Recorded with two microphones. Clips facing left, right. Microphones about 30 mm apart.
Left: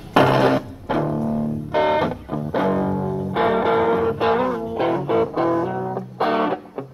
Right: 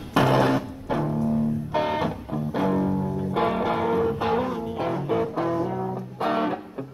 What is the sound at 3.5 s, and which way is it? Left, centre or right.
Music, left.